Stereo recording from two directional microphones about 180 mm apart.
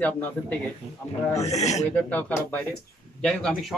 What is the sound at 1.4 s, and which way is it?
Speech, 40° left (ahead or behind).